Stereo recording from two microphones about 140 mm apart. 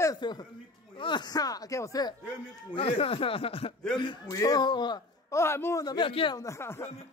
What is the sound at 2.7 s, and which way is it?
A man's voice, 45° left (ahead or behind).